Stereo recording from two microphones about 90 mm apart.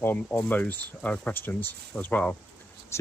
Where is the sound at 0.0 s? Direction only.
20° left (ahead or behind).